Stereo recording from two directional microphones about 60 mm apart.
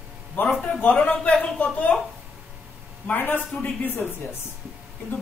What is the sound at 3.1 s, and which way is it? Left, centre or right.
Speech, left.